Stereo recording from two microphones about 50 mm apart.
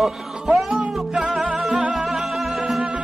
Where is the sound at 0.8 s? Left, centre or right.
Centre.